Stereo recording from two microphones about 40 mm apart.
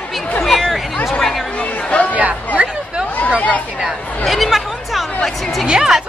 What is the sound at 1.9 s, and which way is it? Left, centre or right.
Chatter, left.